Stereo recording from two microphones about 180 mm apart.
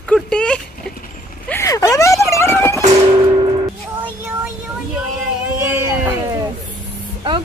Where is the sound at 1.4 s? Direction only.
15° left (ahead or behind).